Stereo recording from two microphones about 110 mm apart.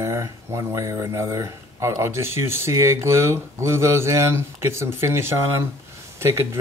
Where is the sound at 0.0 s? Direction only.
25° right (ahead or behind).